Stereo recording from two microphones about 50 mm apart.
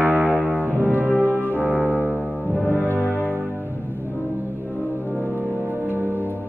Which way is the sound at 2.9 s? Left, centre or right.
Left.